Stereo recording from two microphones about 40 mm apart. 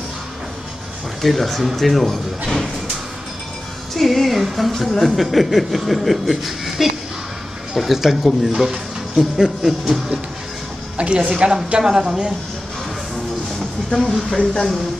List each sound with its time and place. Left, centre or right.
1.2 s speech: centre
3.9 s speech: centre
11.0 s a woman's voice: right
14.3 s speech: left